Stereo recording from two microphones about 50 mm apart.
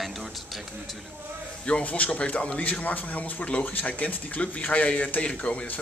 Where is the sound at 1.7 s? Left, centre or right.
Left.